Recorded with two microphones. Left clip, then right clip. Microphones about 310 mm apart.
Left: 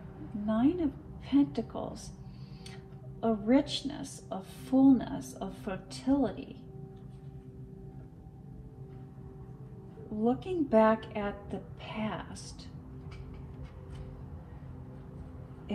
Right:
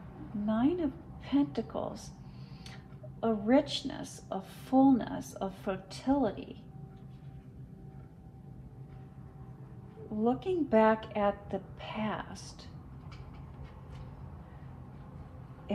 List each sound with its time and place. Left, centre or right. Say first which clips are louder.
0.5 s a woman's voice: left 1 dB; right
3.2 s a woman's voice: even; right
10.2 s a woman's voice: even; right